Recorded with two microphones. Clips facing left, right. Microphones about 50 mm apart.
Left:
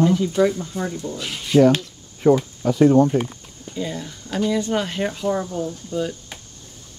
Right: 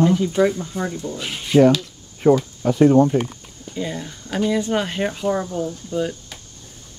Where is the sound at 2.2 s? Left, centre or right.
Centre.